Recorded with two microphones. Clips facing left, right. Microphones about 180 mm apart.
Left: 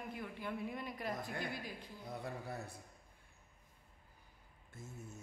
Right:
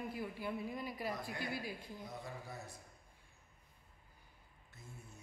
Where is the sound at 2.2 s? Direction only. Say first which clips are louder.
Left 4 dB; 60° left (ahead or behind).